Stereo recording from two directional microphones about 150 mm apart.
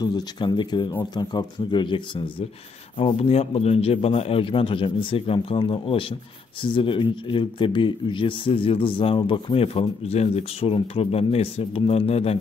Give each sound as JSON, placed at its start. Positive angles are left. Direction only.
{"t": 0.0, "sound": "speech", "side_deg": 30}